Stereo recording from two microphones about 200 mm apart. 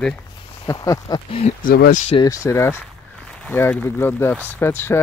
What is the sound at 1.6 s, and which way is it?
Speech, 45° left (ahead or behind).